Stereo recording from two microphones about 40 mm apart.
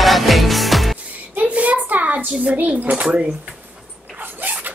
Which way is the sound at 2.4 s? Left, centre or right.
Right.